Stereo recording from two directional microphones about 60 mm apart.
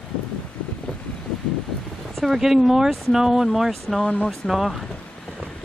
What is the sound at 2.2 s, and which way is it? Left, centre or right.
Speech, centre.